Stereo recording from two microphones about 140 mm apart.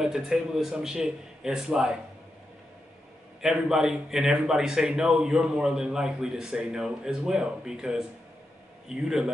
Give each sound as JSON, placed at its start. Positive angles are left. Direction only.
{"t": 0.0, "sound": "a man's voice", "side_deg": -5}
{"t": 3.4, "sound": "a man's voice", "side_deg": -5}